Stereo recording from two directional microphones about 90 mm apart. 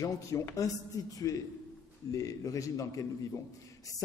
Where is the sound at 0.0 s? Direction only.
35° left (ahead or behind).